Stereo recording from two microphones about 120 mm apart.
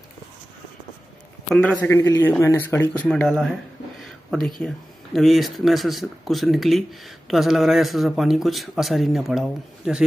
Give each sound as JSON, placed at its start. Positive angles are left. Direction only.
{"t": 1.5, "sound": "a man's voice", "side_deg": 10}
{"t": 3.1, "sound": "speech", "side_deg": 5}